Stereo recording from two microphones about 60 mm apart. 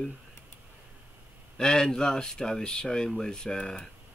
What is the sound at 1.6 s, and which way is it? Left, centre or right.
Speech, centre.